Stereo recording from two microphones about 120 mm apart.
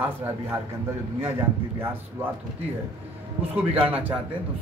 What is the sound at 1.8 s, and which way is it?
Speech, 15° right (ahead or behind).